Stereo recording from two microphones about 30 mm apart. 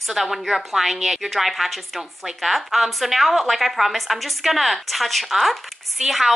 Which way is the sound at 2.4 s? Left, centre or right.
Centre.